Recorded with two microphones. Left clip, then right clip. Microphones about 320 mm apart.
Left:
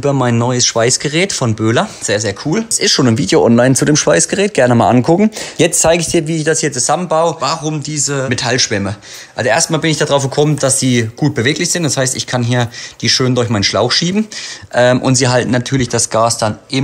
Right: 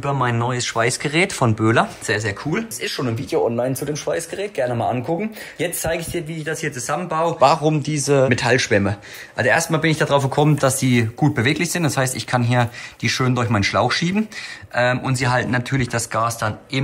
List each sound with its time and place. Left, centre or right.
0.0 s speech: centre
2.8 s speech: left
7.3 s speech: centre